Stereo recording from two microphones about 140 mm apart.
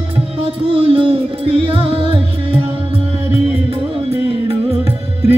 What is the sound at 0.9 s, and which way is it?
Music, 45° right (ahead or behind).